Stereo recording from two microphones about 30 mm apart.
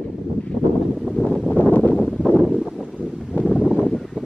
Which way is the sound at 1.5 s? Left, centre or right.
Left.